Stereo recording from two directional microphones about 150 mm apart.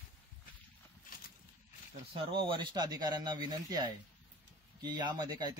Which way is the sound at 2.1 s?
35° right (ahead or behind).